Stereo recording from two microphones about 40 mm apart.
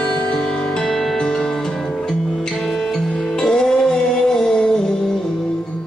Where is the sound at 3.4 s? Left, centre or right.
Centre.